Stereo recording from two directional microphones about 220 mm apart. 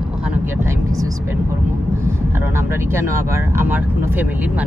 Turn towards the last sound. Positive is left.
turn(degrees=-10)  # may be behind; listen again after turning